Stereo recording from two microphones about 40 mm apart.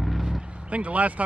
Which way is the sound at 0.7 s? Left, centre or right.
Right.